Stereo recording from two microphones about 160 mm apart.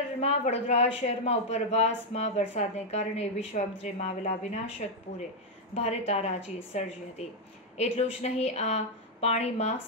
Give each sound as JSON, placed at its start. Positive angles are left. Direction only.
{"t": 0.2, "sound": "a woman's voice", "side_deg": 40}